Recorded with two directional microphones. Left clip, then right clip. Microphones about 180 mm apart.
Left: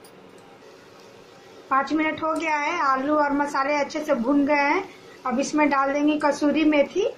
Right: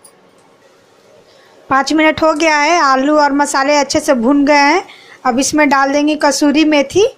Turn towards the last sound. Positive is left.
turn(degrees=-55)  # may be behind; listen again after turning